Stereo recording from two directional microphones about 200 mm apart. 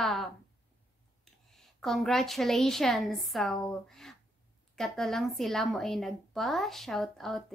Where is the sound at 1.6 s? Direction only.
Centre (ahead or behind).